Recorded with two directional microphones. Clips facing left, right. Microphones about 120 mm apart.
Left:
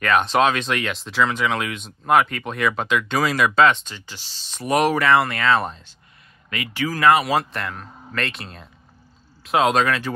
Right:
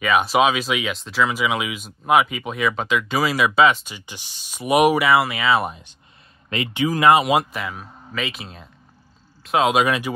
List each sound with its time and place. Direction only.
0.0 s speech: 5° right (ahead or behind)
7.5 s speech: 5° right (ahead or behind)
9.8 s speech: 15° right (ahead or behind)